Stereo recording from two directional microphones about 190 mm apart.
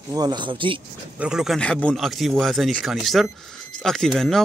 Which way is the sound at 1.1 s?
5° right (ahead or behind).